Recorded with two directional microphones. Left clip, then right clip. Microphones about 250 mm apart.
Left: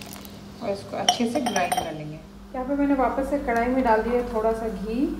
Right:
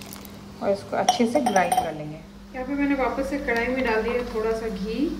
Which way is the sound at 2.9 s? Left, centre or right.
Centre.